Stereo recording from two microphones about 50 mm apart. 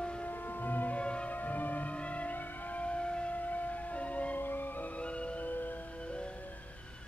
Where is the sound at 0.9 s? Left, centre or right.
Left.